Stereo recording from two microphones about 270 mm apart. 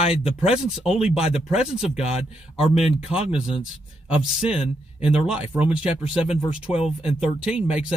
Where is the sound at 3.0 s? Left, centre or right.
Centre.